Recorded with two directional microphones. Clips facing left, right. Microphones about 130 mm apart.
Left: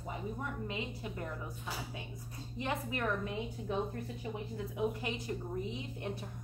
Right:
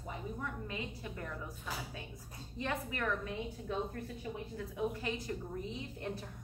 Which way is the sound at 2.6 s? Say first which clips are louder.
Left 1 dB; 20° left (ahead or behind).